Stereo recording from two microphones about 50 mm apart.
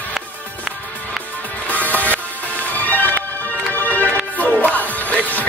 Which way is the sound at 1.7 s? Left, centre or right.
Left.